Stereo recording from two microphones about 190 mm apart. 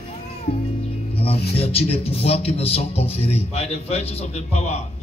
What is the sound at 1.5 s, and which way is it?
Speech, 30° left (ahead or behind).